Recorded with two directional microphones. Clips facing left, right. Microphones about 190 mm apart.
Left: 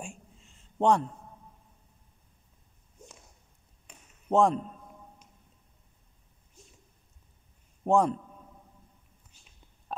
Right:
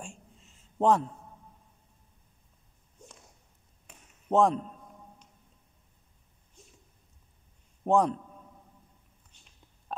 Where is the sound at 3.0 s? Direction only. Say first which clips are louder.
Left 1 dB; 5° left (ahead or behind).